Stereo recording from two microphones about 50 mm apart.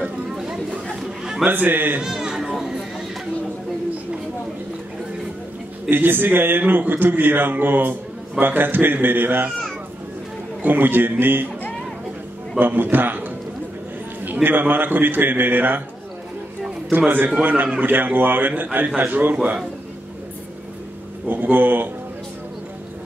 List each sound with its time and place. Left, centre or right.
0.0 s chatter: centre
1.5 s a man's voice: right
2.0 s a sound: centre
5.9 s a man's voice: right
10.6 s a man's voice: right
12.5 s a man's voice: right
16.9 s a man's voice: right
19.3 s a man's voice: right
21.3 s a man's voice: right